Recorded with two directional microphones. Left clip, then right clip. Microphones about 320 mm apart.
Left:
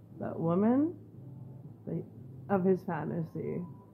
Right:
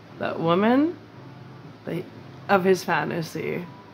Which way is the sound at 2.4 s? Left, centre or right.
Centre.